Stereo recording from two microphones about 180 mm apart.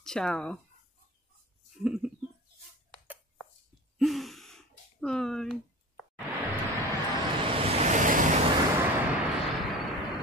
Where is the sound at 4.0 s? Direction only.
Centre (ahead or behind).